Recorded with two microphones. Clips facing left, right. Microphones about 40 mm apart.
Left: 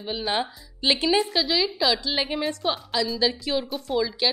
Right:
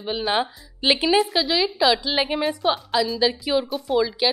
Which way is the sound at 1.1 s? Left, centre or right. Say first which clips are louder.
Right 3 dB; centre.